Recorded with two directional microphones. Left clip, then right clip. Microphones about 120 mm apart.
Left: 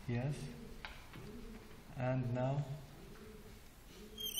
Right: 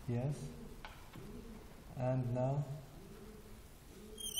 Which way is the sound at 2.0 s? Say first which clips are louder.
Right 1 dB; 25° right (ahead or behind).